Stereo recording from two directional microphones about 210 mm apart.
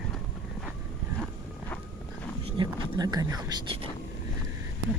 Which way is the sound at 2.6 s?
20° right (ahead or behind).